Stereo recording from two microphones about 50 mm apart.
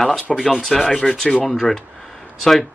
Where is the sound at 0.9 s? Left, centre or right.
Centre.